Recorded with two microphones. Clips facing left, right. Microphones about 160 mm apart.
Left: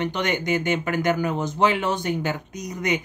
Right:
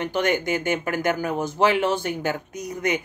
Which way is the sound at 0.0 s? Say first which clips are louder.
Right 2 dB; 45° right (ahead or behind).